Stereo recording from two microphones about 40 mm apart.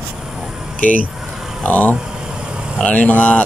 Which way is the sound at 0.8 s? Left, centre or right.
Left.